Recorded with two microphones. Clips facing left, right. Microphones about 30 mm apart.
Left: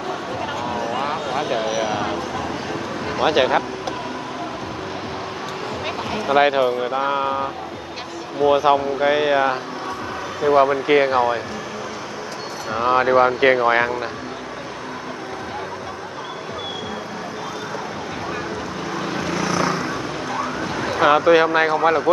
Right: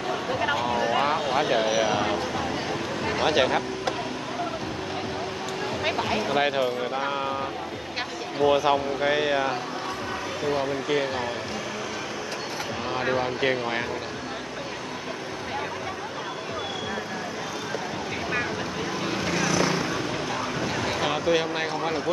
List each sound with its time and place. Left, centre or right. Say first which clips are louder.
0.3 s a sound: right 3 dB; centre
3.3 s speech: left 6 dB; centre
5.9 s a sound: right 1 dB; centre
6.2 s speech: left 11 dB; centre
10.4 s speech: left 12 dB; left
11.1 s speech: left 11 dB; left
12.7 s speech: left 12 dB; left
19.1 s vehicle: left 2 dB; centre
21.0 s speech: left 12 dB; left